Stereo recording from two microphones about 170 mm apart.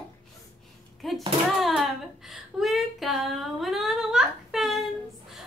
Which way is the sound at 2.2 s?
Centre (ahead or behind).